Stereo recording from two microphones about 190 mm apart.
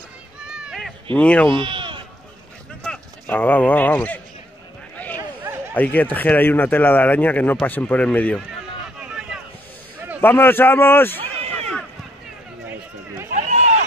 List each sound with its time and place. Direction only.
0.5 s run: 5° right (ahead or behind)
1.1 s speech: 5° left (ahead or behind)
1.5 s speech: 25° right (ahead or behind)
2.8 s speech: 5° left (ahead or behind)
5.0 s a sound: 10° left (ahead or behind)
5.8 s speech: 10° left (ahead or behind)
9.0 s vehicle: 5° right (ahead or behind)
10.2 s a man's voice: 10° left (ahead or behind)
12.6 s run: 15° right (ahead or behind)
13.3 s run: 40° right (ahead or behind)